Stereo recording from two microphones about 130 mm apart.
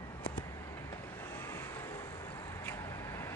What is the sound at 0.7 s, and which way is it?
Vehicle, 15° left (ahead or behind).